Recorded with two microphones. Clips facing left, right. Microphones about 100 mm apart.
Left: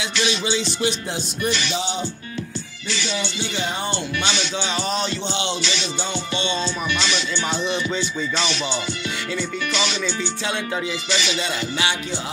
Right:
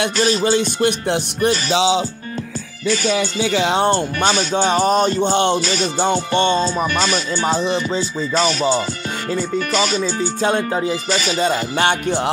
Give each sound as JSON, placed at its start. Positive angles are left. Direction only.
{"t": 0.2, "sound": "music", "side_deg": -45}
{"t": 1.7, "sound": "speech", "side_deg": -90}
{"t": 2.9, "sound": "music", "side_deg": -45}
{"t": 3.6, "sound": "speech", "side_deg": -75}
{"t": 3.9, "sound": "music", "side_deg": -45}